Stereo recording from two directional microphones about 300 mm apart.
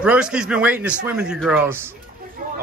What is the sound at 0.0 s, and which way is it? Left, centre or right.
A man's voice, centre.